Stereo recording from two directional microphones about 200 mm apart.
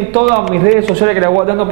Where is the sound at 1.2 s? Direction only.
20° right (ahead or behind).